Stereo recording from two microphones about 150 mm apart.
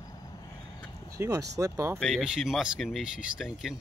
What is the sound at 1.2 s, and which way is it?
Speech, 20° right (ahead or behind).